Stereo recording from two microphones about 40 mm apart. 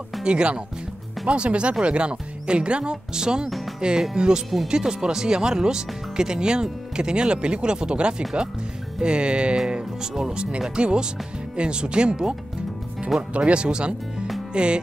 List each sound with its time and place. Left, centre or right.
0.2 s speech: right
3.4 s music: centre
4.0 s speech: centre
13.4 s speech: right
14.5 s music: right